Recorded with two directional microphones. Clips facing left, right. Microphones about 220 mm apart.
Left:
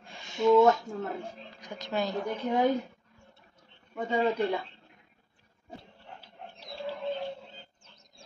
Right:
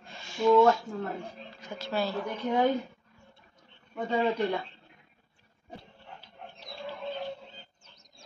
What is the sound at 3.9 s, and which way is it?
Speech, 5° left (ahead or behind).